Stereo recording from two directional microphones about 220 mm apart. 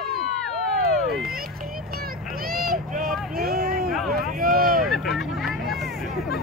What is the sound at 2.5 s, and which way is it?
Boat, 40° right (ahead or behind).